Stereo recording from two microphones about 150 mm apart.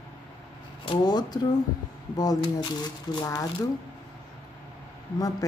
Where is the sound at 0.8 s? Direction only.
30° left (ahead or behind).